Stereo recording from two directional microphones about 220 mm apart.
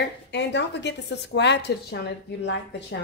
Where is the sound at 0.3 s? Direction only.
50° left (ahead or behind).